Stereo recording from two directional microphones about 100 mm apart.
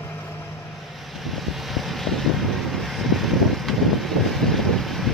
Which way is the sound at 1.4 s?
Centre (ahead or behind).